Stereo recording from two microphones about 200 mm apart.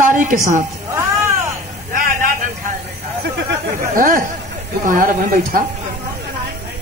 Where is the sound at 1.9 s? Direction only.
45° right (ahead or behind).